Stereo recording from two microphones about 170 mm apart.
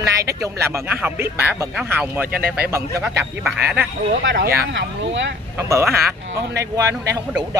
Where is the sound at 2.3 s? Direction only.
60° right (ahead or behind).